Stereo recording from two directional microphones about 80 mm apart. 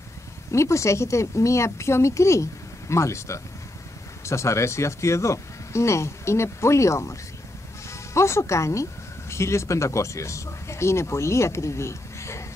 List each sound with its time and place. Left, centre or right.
0.5 s speech: left